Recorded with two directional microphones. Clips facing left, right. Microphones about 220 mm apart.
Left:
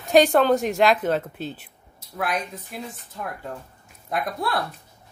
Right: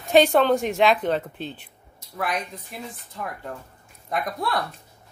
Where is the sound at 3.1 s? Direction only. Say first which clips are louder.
Even; 5° left (ahead or behind).